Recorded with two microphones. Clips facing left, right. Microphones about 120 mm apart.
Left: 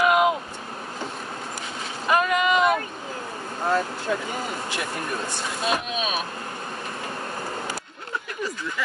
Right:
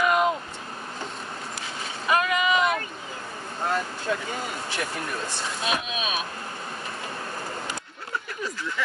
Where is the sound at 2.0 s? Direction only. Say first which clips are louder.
Left 2 dB; centre (ahead or behind).